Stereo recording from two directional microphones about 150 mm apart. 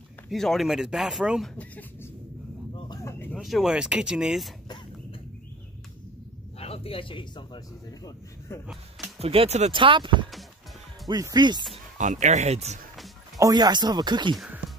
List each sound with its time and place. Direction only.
0.3 s speech: centre (ahead or behind)
1.5 s speech: 10° left (ahead or behind)
2.7 s a sound: 25° left (ahead or behind)
3.3 s speech: centre (ahead or behind)
6.6 s speech: 40° left (ahead or behind)
9.2 s speech: 40° right (ahead or behind)
12.0 s speech: 55° right (ahead or behind)
13.4 s speech: 25° right (ahead or behind)
14.3 s speech: 5° right (ahead or behind)